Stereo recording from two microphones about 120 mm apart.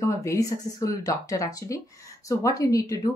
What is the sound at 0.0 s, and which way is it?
Speech, 25° left (ahead or behind).